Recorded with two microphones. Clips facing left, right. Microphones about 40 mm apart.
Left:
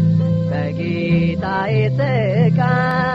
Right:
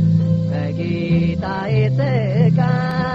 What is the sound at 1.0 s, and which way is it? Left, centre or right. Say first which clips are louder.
Music: left 2 dB; centre.